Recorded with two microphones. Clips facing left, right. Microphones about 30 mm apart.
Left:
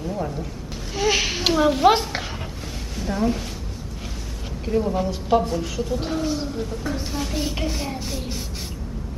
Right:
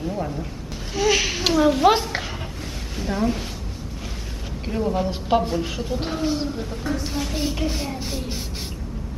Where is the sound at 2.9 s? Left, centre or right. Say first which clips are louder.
Even; centre.